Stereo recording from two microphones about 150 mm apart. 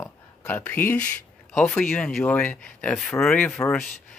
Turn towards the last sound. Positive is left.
turn(degrees=5)  # may be behind; listen again after turning